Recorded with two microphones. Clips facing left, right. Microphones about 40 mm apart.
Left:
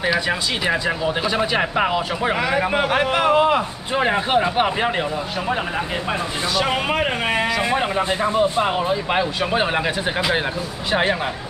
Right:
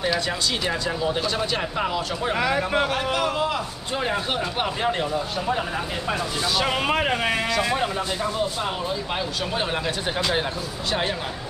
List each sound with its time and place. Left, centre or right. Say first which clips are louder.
0.3 s a man's voice: left 4 dB; left
1.6 s a man's voice: left 6 dB; left
2.4 s speech: left 1 dB; centre
2.9 s a man's voice: left 7 dB; left
6.6 s speech: left 2 dB; centre
7.3 s a man's voice: left 3 dB; left
10.9 s a man's voice: left 6 dB; left